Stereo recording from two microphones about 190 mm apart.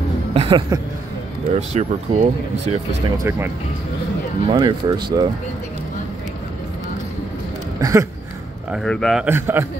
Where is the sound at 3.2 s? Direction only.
10° right (ahead or behind).